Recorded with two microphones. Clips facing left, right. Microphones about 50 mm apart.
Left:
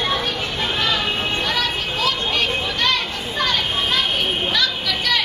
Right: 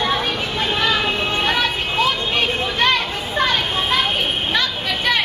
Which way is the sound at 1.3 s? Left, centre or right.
Right.